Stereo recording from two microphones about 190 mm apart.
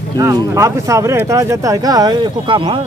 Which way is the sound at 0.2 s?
15° right (ahead or behind).